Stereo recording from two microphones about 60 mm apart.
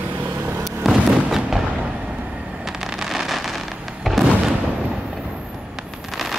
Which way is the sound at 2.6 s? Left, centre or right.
Centre.